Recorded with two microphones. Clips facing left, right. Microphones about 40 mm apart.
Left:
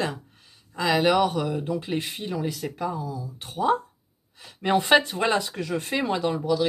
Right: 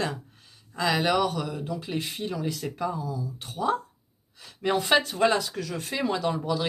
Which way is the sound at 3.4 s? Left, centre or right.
Left.